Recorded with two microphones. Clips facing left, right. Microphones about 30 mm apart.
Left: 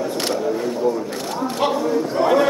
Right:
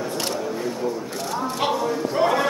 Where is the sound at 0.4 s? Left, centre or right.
Centre.